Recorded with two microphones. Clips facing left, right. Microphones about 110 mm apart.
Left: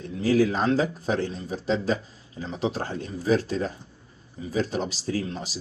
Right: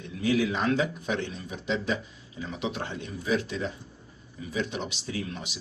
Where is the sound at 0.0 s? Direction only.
35° left (ahead or behind).